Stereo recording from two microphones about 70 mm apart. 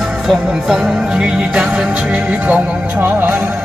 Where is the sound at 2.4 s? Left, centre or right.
Right.